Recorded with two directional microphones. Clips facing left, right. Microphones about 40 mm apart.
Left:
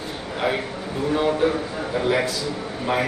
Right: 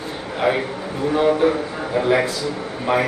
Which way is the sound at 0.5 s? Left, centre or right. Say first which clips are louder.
Right 5 dB; right.